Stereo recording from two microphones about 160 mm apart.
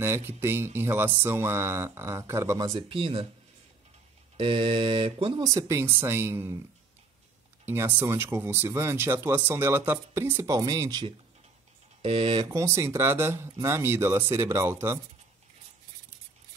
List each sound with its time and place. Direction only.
0.0 s speech: 15° right (ahead or behind)
2.7 s speech: 35° right (ahead or behind)
4.4 s speech: 30° right (ahead or behind)
5.5 s speech: 20° right (ahead or behind)
7.6 s speech: 15° right (ahead or behind); by 12.4 s 35° right (ahead or behind)
12.4 s speech: 15° right (ahead or behind)